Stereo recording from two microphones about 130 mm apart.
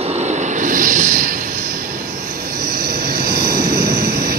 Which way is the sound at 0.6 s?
90° right.